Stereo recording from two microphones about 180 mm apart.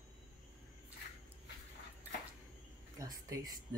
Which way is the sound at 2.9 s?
20° right (ahead or behind).